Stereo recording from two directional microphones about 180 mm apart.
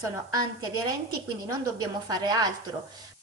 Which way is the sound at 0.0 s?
20° right (ahead or behind).